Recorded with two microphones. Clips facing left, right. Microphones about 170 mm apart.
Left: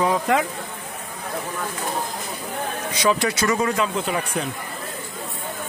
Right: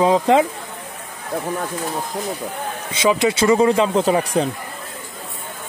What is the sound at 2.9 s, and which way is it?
Speech, 20° right (ahead or behind).